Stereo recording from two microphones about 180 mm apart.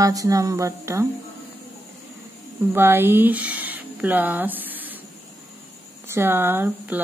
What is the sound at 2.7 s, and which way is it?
Speech, 10° right (ahead or behind).